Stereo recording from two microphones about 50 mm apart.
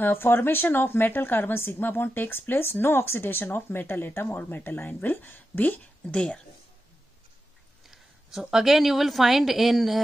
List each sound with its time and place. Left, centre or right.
0.0 s a woman's voice: left
6.0 s speech: left
7.9 s a woman's voice: centre